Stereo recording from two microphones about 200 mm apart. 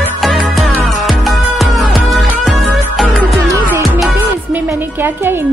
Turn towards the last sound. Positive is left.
turn(degrees=-10)  # may be behind; listen again after turning